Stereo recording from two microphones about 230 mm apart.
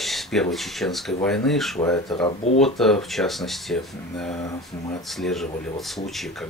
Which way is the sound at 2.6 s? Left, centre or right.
Centre.